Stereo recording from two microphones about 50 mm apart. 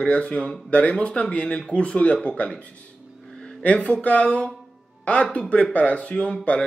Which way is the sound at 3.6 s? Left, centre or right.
Left.